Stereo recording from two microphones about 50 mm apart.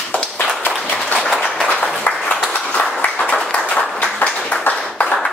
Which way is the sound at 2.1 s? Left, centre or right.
Left.